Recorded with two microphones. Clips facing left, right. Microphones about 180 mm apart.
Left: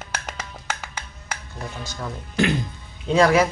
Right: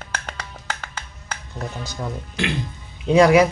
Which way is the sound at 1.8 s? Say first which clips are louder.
Right 3 dB; 15° right (ahead or behind).